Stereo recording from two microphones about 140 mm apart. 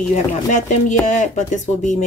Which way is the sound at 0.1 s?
60° left (ahead or behind).